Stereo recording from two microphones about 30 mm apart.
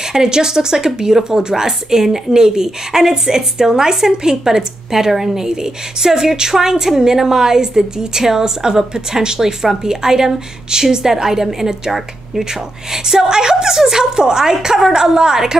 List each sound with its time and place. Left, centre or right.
0.1 s speech: right
12.9 s a woman's voice: centre